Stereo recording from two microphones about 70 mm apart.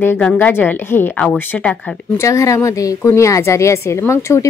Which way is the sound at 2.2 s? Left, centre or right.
Left.